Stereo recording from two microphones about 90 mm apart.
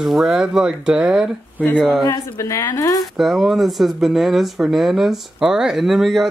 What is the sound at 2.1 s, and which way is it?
Speech, 35° left (ahead or behind).